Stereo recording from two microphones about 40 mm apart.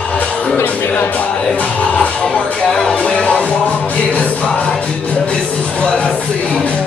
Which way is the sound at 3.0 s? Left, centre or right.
Left.